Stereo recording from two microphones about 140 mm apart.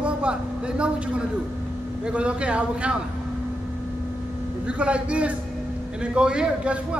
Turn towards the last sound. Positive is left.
turn(degrees=-5)  # may be behind; listen again after turning